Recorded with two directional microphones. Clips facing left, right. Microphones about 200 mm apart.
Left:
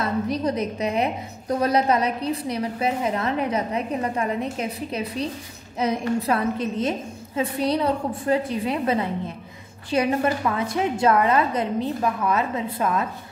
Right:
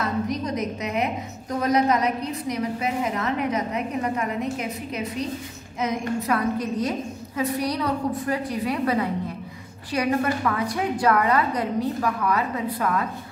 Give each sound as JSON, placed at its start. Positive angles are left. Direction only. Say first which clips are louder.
{"t": 0.3, "sound": "a woman's voice", "louder": "left 2 dB", "side_deg": 30}
{"t": 5.8, "sound": "a woman's voice", "louder": "left 3 dB", "side_deg": 30}